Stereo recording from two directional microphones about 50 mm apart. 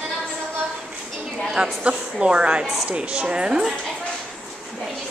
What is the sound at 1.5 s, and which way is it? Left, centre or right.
A woman's voice, centre.